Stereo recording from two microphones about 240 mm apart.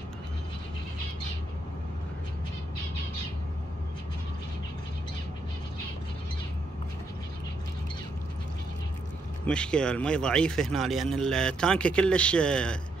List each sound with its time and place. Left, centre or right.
9.5 s speech: centre